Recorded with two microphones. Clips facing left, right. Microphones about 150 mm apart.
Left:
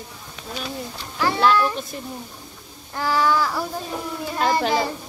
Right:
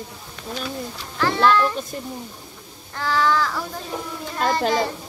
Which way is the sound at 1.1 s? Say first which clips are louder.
Right 1 dB; 10° left (ahead or behind).